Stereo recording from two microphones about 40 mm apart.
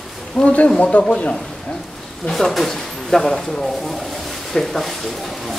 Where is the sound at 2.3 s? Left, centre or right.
Centre.